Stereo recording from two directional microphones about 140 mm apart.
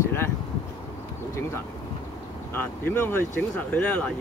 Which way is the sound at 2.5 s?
15° left (ahead or behind).